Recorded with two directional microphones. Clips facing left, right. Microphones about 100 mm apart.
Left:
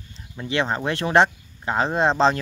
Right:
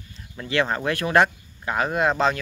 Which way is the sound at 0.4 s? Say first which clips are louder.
Even; 20° left (ahead or behind).